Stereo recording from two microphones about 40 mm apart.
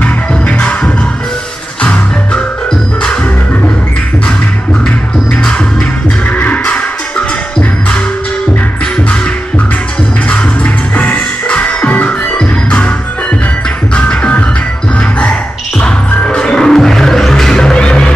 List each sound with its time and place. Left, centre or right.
0.0 s music: left
6.3 s music: left
10.3 s music: left
12.4 s music: left
13.9 s music: left
16.3 s music: centre